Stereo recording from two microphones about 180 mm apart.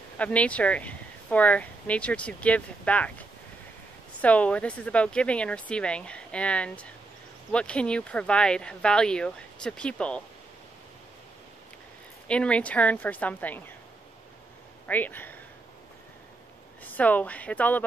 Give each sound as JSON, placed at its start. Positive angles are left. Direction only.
{"t": 0.2, "sound": "speech", "side_deg": 5}
{"t": 4.2, "sound": "speech", "side_deg": 5}
{"t": 12.3, "sound": "speech", "side_deg": 5}
{"t": 14.9, "sound": "speech", "side_deg": 10}
{"t": 16.8, "sound": "speech", "side_deg": 10}